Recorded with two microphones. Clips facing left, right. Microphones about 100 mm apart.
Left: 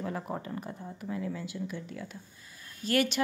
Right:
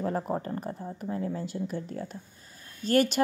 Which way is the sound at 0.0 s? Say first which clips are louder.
Right 6 dB; 40° right (ahead or behind).